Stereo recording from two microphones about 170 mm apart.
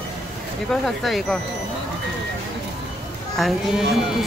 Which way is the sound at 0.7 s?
Centre (ahead or behind).